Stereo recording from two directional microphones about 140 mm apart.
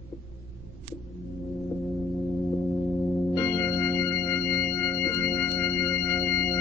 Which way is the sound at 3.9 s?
15° left (ahead or behind).